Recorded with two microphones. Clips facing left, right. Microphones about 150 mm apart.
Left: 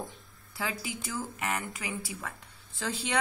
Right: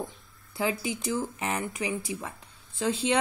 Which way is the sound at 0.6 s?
20° right (ahead or behind).